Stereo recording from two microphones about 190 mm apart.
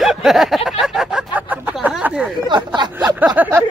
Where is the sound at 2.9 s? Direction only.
10° right (ahead or behind).